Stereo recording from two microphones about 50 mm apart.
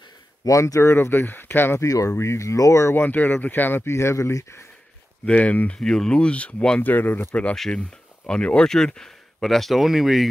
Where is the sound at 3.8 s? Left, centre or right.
Left.